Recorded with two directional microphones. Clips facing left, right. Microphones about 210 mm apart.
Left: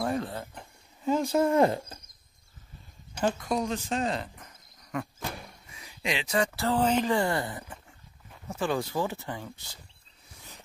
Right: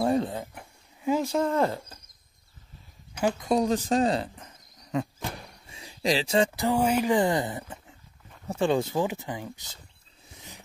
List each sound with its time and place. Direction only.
0.0 s a sound: 25° right (ahead or behind); by 1.5 s centre (ahead or behind)
1.5 s speech: 15° left (ahead or behind)
3.2 s speech: 15° right (ahead or behind)
3.4 s speech: 35° right (ahead or behind)
5.7 s speech: 30° right (ahead or behind)